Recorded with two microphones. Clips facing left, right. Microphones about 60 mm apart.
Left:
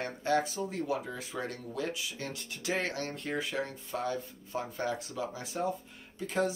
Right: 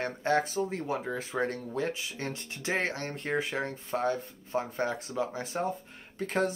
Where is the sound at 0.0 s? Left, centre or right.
Right.